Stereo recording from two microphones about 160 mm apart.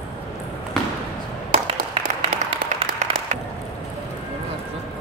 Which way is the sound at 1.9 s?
35° right (ahead or behind).